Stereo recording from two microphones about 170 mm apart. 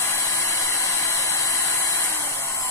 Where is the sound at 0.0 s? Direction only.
15° left (ahead or behind).